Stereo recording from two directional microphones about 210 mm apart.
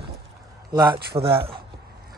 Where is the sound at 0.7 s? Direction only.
20° right (ahead or behind).